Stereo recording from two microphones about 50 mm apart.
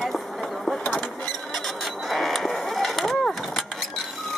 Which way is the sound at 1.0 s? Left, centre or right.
Left.